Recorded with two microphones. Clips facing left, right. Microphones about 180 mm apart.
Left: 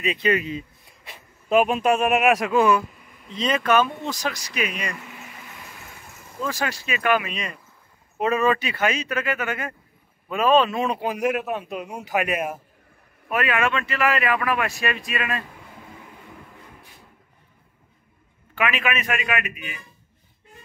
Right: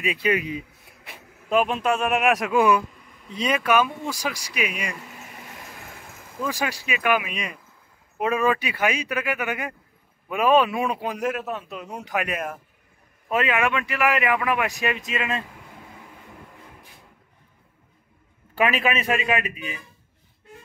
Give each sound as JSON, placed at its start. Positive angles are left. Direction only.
{"t": 0.0, "sound": "speech", "side_deg": -10}
{"t": 1.5, "sound": "a man's voice", "side_deg": 10}
{"t": 2.5, "sound": "speech", "side_deg": -15}
{"t": 6.4, "sound": "speech", "side_deg": -10}
{"t": 11.1, "sound": "a man's voice", "side_deg": 15}
{"t": 13.3, "sound": "speech", "side_deg": -20}
{"t": 18.5, "sound": "a man's voice", "side_deg": -35}